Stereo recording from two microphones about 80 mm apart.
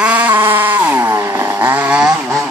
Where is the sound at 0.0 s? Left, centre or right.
Centre.